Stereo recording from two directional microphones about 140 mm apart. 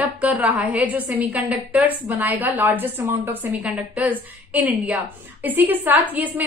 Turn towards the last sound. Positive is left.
turn(degrees=-10)  # may be behind; listen again after turning